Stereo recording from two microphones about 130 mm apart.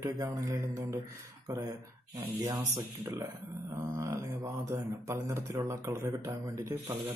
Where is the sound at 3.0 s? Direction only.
25° right (ahead or behind).